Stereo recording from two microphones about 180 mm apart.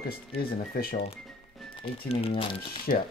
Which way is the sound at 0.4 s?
55° left (ahead or behind).